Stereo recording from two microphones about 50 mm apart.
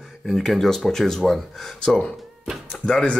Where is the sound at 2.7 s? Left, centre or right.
Left.